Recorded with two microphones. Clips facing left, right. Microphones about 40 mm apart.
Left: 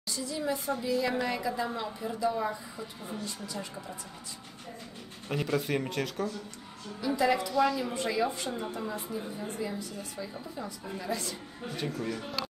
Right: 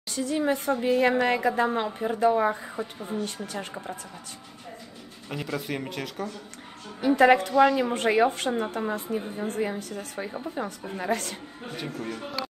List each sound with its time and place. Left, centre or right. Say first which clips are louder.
0.1 s a woman's voice: right 7 dB; right
5.3 s speech: left 2 dB; centre
7.2 s a woman's voice: right 8 dB; right
10.3 s a woman's voice: right 7 dB; right